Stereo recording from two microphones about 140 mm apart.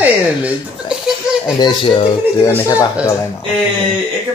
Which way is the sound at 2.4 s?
25° left (ahead or behind).